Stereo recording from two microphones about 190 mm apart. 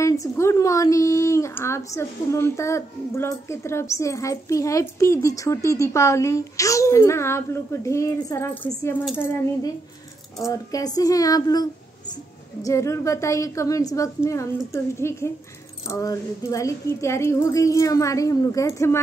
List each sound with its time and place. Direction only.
0.0 s speech: 15° left (ahead or behind)
12.6 s speech: 15° left (ahead or behind)